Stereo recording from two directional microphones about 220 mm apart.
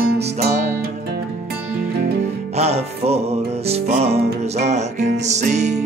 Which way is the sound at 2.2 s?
30° right (ahead or behind).